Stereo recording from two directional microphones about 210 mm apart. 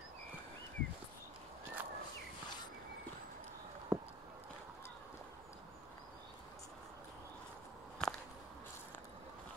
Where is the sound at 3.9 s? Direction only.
10° right (ahead or behind).